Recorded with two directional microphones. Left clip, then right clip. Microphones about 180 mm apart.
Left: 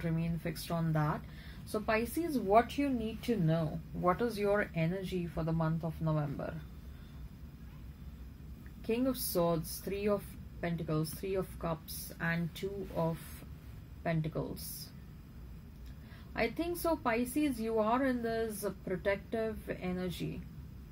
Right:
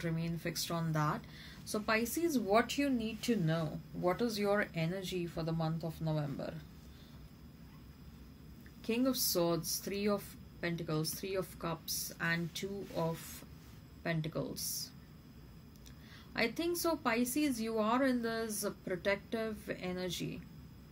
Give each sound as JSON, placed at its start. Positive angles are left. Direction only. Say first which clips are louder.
{"t": 0.0, "sound": "a woman's voice", "louder": "left 1 dB", "side_deg": -40}
{"t": 8.8, "sound": "a woman's voice", "louder": "even", "side_deg": -40}
{"t": 16.3, "sound": "a woman's voice", "louder": "even", "side_deg": -40}